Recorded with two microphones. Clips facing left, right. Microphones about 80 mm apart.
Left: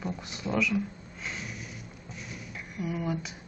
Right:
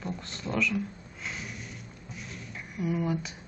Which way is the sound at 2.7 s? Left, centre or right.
Centre.